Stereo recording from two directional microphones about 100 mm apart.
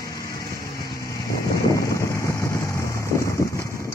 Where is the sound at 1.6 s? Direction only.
30° left (ahead or behind).